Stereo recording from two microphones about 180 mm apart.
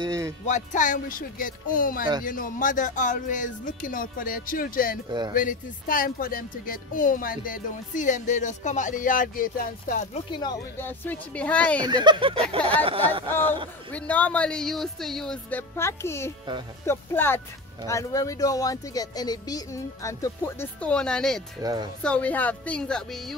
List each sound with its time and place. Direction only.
0.0 s music: 20° right (ahead or behind)
0.5 s speech: 45° left (ahead or behind)
10.1 s speech: 25° left (ahead or behind)
10.8 s speech: 10° left (ahead or behind)
11.8 s speech: 25° right (ahead or behind)
13.9 s speech: 10° left (ahead or behind)
15.7 s speech: 15° left (ahead or behind)